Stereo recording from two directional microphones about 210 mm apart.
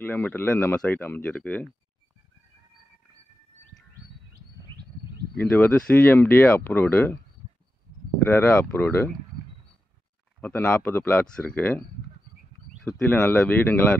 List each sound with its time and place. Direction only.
0.0 s speech: 10° left (ahead or behind)
4.3 s a sound: 50° right (ahead or behind)
5.3 s speech: 5° left (ahead or behind)
8.3 s speech: 10° left (ahead or behind)
10.4 s speech: 10° left (ahead or behind)